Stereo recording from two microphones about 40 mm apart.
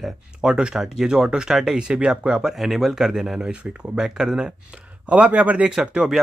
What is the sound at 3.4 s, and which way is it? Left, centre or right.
Speech, right.